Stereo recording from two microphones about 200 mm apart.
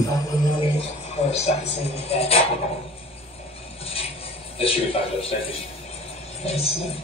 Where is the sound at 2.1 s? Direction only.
30° left (ahead or behind).